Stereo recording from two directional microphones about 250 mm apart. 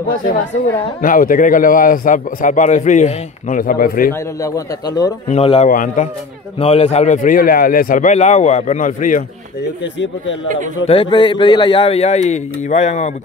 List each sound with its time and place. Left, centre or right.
0.7 s speech: left
4.4 s a man's voice: centre
5.3 s a man's voice: left
10.9 s a man's voice: centre